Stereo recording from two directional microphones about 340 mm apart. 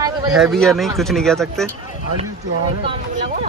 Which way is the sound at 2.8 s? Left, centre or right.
Centre.